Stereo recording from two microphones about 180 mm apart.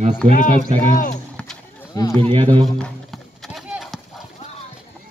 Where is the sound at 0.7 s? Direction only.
35° right (ahead or behind).